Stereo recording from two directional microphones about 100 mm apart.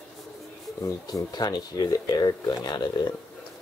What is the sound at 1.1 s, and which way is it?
Speech, 45° left (ahead or behind).